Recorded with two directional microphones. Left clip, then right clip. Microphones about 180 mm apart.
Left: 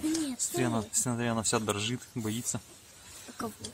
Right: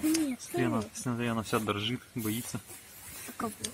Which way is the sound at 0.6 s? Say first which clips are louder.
Even; 15° left (ahead or behind).